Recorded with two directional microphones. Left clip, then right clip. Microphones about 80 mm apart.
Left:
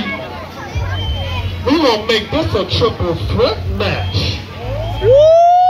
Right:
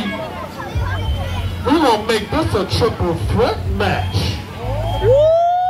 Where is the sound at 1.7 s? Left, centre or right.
Right.